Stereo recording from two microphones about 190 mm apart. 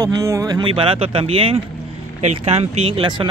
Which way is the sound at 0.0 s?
15° right (ahead or behind).